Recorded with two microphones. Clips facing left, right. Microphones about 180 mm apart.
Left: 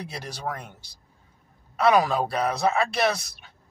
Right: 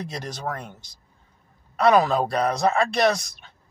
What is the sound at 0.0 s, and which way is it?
Speech, 10° left (ahead or behind).